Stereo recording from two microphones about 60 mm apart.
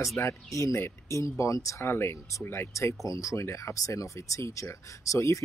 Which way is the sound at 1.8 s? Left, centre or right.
Left.